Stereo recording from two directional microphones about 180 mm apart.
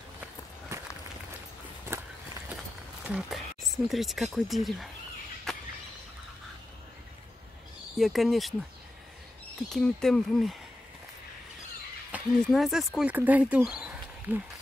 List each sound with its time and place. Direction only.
0.7 s walk: 15° right (ahead or behind)
3.1 s speech: 5° right (ahead or behind)
5.5 s a sound: centre (ahead or behind)
8.0 s speech: centre (ahead or behind)
9.7 s speech: 5° left (ahead or behind)
12.1 s speech: centre (ahead or behind)